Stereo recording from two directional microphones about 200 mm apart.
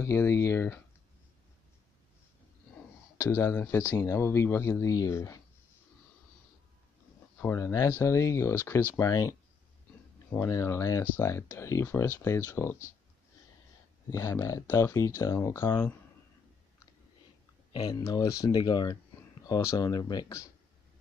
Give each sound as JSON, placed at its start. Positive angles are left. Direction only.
{"t": 0.0, "sound": "speech", "side_deg": 15}
{"t": 3.2, "sound": "speech", "side_deg": 15}
{"t": 7.3, "sound": "speech", "side_deg": 10}
{"t": 10.3, "sound": "speech", "side_deg": 10}
{"t": 14.1, "sound": "speech", "side_deg": 15}
{"t": 17.7, "sound": "speech", "side_deg": 20}